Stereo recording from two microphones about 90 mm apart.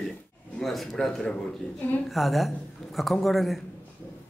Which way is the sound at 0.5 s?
Centre (ahead or behind).